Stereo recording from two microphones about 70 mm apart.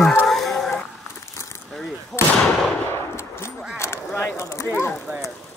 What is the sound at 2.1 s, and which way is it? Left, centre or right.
Artillery fire, centre.